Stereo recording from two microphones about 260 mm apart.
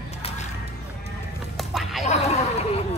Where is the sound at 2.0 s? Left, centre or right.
Left.